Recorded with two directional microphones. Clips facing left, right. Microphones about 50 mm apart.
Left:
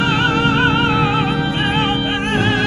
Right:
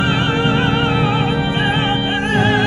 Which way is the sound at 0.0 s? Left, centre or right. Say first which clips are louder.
Left 1 dB; centre.